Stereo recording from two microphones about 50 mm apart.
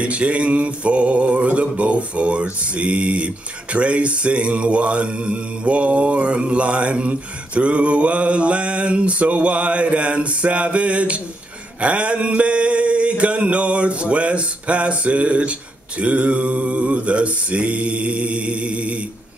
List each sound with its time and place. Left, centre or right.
0.0 s mantra: right